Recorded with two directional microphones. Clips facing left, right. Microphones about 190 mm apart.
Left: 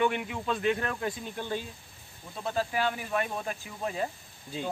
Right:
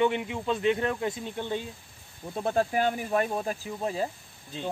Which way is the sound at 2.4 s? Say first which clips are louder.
Right 4 dB; 50° right (ahead or behind).